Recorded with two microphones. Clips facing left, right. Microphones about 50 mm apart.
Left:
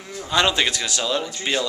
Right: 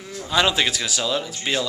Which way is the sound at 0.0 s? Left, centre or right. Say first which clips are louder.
Even; centre.